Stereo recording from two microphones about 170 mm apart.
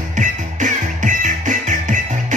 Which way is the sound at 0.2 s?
45° right (ahead or behind).